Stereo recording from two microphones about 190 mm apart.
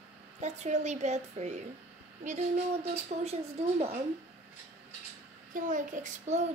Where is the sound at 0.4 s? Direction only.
35° right (ahead or behind).